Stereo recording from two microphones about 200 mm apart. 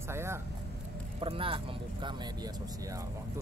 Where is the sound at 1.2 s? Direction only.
25° right (ahead or behind).